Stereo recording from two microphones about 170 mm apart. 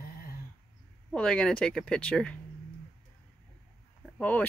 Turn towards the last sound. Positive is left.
turn(degrees=10)  # may be behind; listen again after turning